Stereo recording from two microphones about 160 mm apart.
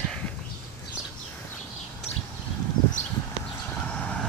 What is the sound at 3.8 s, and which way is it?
Vehicle, 5° left (ahead or behind).